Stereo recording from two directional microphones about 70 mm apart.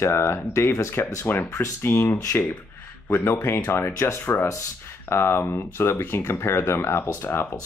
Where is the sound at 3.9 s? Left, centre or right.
Left.